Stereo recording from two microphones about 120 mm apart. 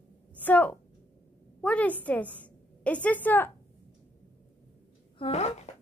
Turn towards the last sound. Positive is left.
turn(degrees=65)  # may be behind; listen again after turning